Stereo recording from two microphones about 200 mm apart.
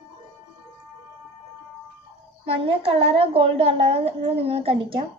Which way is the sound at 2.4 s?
30° right (ahead or behind).